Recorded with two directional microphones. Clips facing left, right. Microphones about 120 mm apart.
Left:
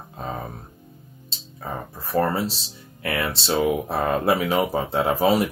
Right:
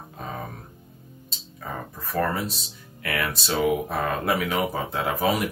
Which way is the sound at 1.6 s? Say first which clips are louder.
Left 2 dB; 30° left (ahead or behind).